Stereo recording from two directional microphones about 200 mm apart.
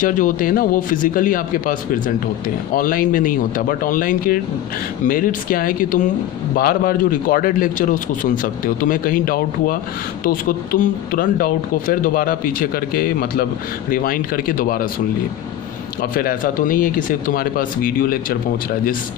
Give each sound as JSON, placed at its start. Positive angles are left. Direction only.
{"t": 0.0, "sound": "speech", "side_deg": 40}
{"t": 16.0, "sound": "speech", "side_deg": 45}